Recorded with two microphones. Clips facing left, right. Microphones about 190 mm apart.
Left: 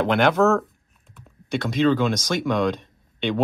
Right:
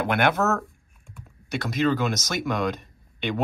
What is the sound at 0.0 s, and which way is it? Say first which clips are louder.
Speech: left 4 dB; 10° right (ahead or behind).